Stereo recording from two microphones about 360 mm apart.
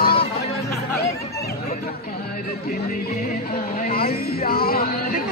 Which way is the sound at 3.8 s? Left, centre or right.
Left.